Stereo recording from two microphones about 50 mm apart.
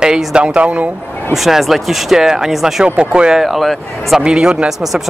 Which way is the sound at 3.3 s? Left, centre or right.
Centre.